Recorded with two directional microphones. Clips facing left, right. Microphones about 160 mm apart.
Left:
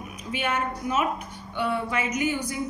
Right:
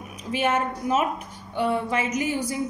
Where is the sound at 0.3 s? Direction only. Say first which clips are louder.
Right 4 dB; 35° right (ahead or behind).